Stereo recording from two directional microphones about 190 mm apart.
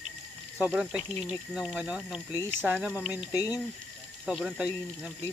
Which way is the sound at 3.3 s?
20° left (ahead or behind).